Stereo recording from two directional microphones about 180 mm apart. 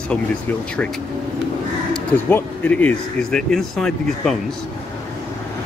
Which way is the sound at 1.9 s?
10° left (ahead or behind).